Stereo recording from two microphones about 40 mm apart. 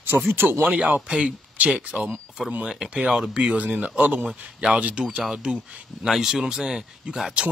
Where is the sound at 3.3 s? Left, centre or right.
Right.